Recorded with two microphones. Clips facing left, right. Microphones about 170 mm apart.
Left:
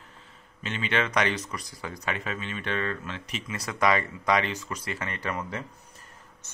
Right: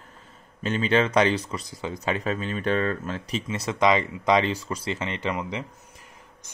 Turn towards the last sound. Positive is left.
turn(degrees=-15)  # may be behind; listen again after turning